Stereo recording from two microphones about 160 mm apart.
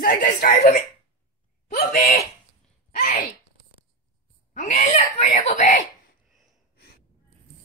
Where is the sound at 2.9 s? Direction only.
55° left (ahead or behind).